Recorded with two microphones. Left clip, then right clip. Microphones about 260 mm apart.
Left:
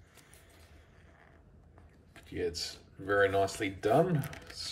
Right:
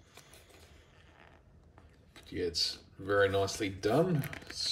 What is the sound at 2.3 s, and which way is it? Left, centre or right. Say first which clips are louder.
Speech: right 3 dB; centre.